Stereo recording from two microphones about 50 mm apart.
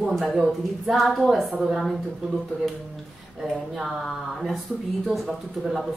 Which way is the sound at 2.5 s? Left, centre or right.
Left.